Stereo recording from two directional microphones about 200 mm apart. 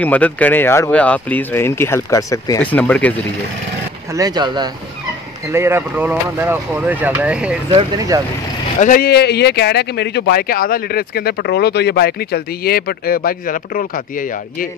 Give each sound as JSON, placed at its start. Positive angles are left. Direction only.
{"t": 0.0, "sound": "speech", "side_deg": 5}
{"t": 4.1, "sound": "speech", "side_deg": -20}
{"t": 7.7, "sound": "speech", "side_deg": -15}
{"t": 8.8, "sound": "speech", "side_deg": 45}